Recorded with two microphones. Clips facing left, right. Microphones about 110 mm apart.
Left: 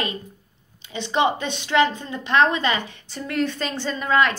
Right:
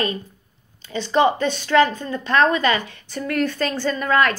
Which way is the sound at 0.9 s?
20° left (ahead or behind).